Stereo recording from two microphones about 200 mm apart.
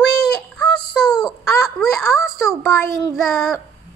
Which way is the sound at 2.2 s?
15° left (ahead or behind).